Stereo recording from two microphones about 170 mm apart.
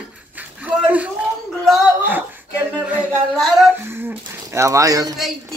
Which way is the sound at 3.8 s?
15° right (ahead or behind).